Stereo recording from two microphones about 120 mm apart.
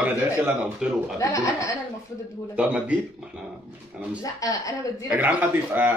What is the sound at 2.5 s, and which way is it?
Speech, 10° right (ahead or behind).